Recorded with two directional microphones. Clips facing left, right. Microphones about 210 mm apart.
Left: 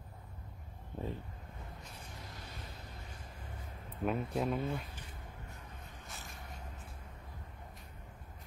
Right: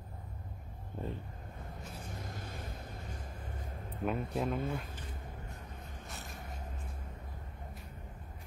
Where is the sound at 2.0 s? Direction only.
45° right (ahead or behind).